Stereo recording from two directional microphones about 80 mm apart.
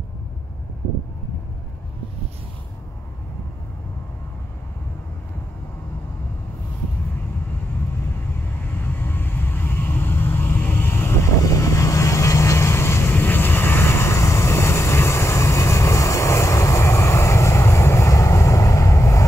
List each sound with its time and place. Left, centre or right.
8.8 s vehicle: left
11.4 s vehicle: left